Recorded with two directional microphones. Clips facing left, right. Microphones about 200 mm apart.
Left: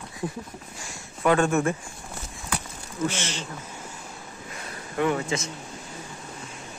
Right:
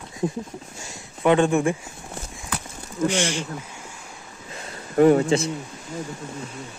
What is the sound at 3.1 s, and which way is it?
Speech, 15° right (ahead or behind).